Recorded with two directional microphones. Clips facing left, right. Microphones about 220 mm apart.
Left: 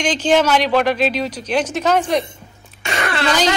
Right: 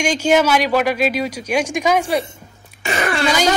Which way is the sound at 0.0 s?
10° right (ahead or behind).